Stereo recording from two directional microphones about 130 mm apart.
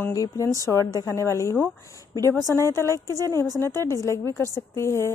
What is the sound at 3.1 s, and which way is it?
Speech, 30° right (ahead or behind).